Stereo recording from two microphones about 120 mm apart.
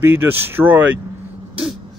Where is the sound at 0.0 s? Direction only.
15° right (ahead or behind).